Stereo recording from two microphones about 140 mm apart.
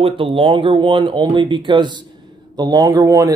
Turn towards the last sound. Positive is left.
turn(degrees=-25)  # may be behind; listen again after turning